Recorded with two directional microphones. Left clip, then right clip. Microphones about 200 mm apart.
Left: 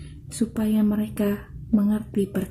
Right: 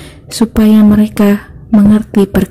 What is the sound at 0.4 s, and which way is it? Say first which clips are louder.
A woman's voice: right 15 dB; 35° right (ahead or behind).